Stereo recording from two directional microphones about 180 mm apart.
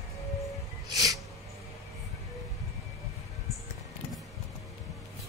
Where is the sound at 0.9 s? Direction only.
20° right (ahead or behind).